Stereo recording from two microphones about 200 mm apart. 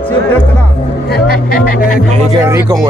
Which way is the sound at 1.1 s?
50° left (ahead or behind).